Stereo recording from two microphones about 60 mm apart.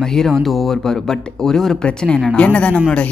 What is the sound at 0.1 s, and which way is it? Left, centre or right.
Speech, centre.